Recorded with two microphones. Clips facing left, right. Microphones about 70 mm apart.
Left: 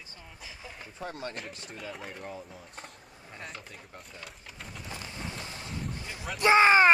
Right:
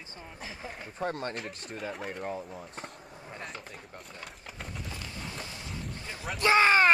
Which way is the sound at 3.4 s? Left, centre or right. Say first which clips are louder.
Even; centre.